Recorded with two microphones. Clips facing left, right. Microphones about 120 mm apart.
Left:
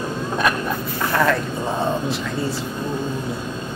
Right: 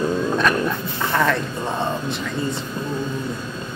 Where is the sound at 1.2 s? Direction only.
Centre (ahead or behind).